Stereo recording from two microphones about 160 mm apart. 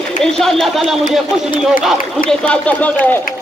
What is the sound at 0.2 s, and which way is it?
A man's voice, 5° left (ahead or behind).